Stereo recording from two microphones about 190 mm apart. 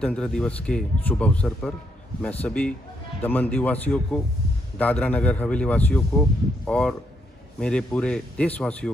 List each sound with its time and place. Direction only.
0.0 s a man's voice: 5° left (ahead or behind)